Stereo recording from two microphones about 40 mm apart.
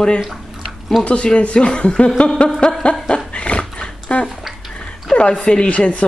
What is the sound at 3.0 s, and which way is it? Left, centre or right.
Dog, left.